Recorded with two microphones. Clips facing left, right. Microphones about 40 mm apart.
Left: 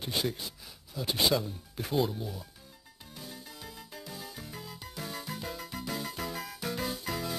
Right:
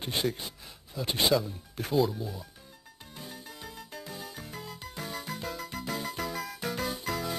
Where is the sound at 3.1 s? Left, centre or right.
Centre.